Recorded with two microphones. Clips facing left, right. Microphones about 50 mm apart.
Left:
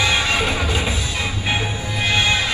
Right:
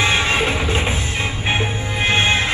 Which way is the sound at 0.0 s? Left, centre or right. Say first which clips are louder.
Right 1 dB; right.